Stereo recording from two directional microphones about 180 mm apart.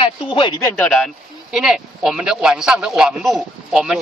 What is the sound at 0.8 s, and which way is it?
Speech, centre (ahead or behind).